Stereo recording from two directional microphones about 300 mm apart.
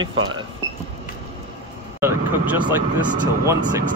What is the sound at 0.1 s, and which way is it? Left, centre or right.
Speech, right.